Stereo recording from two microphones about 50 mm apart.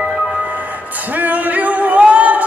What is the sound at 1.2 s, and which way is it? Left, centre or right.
Music, right.